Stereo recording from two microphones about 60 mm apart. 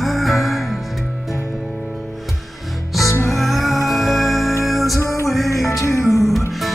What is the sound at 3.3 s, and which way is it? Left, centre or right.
Music, centre.